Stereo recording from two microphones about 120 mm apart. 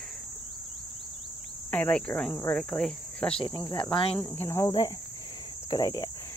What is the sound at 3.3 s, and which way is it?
Speech, 45° left (ahead or behind).